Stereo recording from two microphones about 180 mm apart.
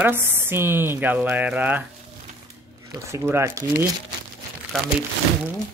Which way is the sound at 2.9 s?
15° right (ahead or behind).